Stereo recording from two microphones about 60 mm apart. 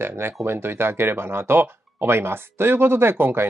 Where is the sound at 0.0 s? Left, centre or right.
Right.